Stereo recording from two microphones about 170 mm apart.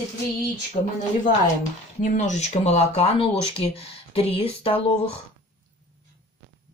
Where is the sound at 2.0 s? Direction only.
50° left (ahead or behind); by 4.8 s 35° left (ahead or behind).